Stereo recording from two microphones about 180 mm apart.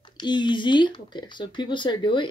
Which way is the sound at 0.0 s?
25° left (ahead or behind).